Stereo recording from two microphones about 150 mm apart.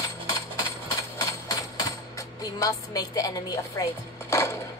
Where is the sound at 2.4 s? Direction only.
25° left (ahead or behind).